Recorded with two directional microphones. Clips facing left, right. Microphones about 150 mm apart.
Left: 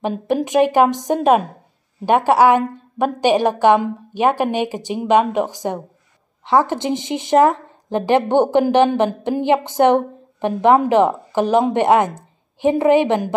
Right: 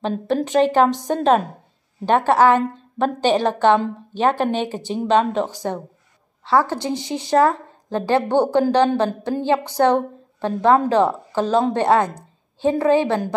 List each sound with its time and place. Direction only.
0.0 s a woman's voice: 10° left (ahead or behind)